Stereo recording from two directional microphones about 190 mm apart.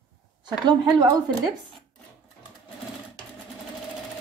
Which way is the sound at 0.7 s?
25° right (ahead or behind).